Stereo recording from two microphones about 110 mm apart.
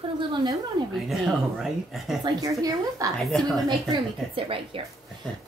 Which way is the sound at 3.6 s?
50° right (ahead or behind).